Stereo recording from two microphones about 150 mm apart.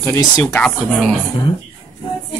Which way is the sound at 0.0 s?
15° left (ahead or behind).